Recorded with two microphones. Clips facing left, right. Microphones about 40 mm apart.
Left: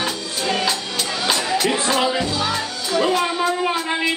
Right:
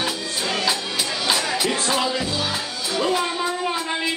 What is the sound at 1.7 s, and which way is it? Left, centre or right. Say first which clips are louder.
Music: left 3 dB; centre.